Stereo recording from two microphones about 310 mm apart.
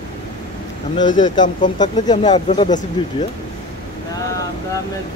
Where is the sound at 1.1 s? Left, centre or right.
Left.